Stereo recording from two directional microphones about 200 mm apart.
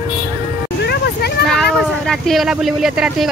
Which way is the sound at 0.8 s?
55° left (ahead or behind).